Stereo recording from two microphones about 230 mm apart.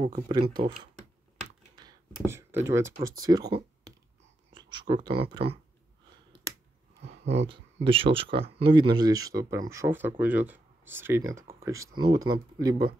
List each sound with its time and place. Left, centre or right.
0.3 s speech: centre
1.8 s speech: centre
4.6 s speech: centre
7.2 s speech: right